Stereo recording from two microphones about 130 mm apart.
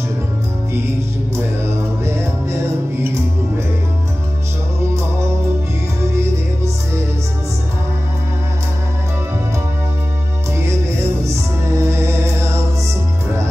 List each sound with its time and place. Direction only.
2.0 s music: 20° right (ahead or behind)
11.2 s music: 20° right (ahead or behind)